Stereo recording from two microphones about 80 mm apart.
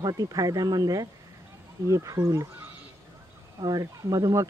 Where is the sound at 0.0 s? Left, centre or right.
Right.